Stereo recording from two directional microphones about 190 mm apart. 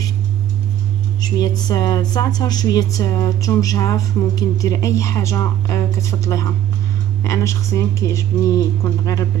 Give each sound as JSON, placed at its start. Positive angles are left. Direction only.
{"t": 1.2, "sound": "speech", "side_deg": 20}